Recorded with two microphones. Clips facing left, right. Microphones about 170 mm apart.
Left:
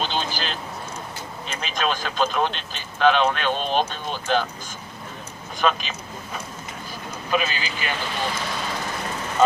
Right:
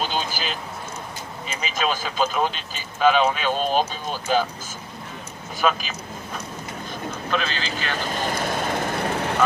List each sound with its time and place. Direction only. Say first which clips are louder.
0.0 s speech: even; 10° right (ahead or behind)
5.6 s speech: even; 5° right (ahead or behind)
7.2 s speech: left 2 dB; 10° left (ahead or behind)
8.0 s vehicle: right 5 dB; 45° right (ahead or behind); by 9.4 s 70° right (ahead or behind)